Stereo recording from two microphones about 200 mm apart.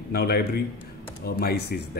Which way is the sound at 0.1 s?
50° left (ahead or behind).